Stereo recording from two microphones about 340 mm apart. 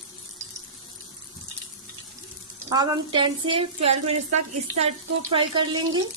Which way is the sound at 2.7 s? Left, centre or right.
Centre.